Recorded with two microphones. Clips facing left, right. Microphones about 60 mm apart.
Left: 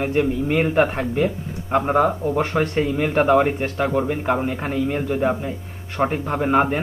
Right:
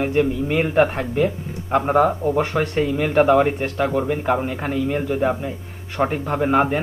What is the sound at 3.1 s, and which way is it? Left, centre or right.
Speech, centre.